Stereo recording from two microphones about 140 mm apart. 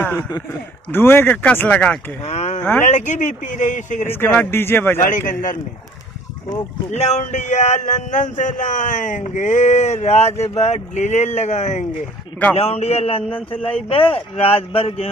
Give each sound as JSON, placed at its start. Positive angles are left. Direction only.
{"t": 0.5, "sound": "speech", "side_deg": 15}
{"t": 2.2, "sound": "a sound", "side_deg": 55}
{"t": 2.8, "sound": "speech", "side_deg": 60}
{"t": 4.1, "sound": "speech", "side_deg": 15}
{"t": 5.0, "sound": "a man's voice", "side_deg": 70}
{"t": 6.9, "sound": "a man's voice", "side_deg": 55}